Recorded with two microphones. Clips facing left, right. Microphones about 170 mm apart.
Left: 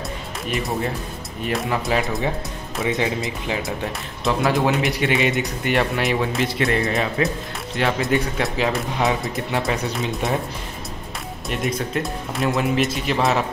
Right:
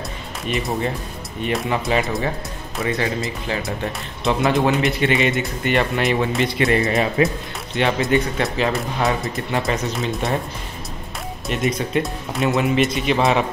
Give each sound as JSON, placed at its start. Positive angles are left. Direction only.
{"t": 0.5, "sound": "speech", "side_deg": 0}
{"t": 2.9, "sound": "speech", "side_deg": 15}
{"t": 3.6, "sound": "speech", "side_deg": 0}
{"t": 11.4, "sound": "speech", "side_deg": 0}